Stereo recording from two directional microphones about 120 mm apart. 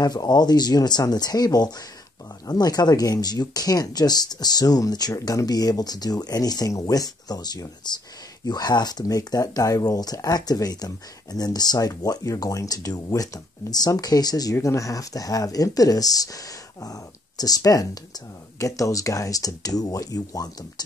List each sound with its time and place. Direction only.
0.0 s speech: 35° left (ahead or behind)